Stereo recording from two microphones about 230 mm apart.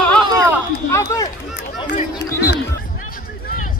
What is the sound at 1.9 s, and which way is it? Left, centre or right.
Speech, left.